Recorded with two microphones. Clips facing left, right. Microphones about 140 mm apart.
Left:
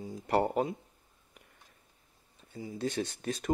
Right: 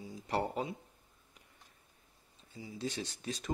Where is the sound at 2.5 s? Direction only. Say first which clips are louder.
Left 6 dB; 50° left (ahead or behind).